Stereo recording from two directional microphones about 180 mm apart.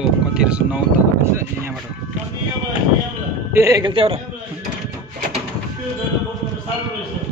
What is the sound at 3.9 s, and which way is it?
Speech, 30° right (ahead or behind).